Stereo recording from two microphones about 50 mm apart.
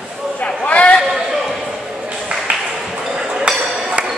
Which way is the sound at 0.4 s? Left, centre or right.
Left.